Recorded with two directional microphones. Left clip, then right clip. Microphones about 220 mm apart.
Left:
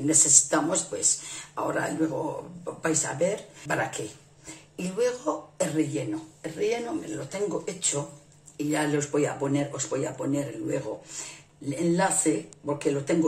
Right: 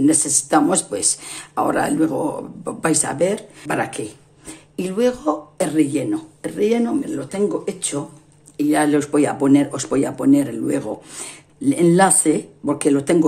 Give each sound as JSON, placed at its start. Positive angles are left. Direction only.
{"t": 0.0, "sound": "speech", "side_deg": -40}
{"t": 8.5, "sound": "speech", "side_deg": -40}